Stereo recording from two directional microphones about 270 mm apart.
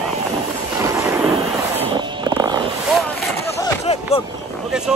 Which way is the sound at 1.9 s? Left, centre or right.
Centre.